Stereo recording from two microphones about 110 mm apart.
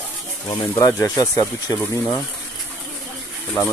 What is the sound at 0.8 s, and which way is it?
Speech, 30° left (ahead or behind).